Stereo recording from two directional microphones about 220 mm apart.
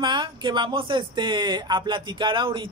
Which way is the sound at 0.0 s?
20° right (ahead or behind).